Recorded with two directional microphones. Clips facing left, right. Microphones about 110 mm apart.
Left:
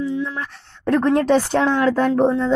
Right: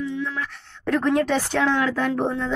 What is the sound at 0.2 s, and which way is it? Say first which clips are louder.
A woman's voice: left 2 dB; 35° left (ahead or behind).